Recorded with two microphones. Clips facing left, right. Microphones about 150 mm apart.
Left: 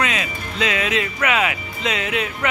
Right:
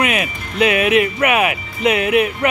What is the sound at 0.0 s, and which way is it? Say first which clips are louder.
Music: right 4 dB; 25° right (ahead or behind).